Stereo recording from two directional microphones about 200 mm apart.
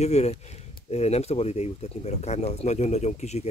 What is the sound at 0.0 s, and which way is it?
Speech, 35° left (ahead or behind).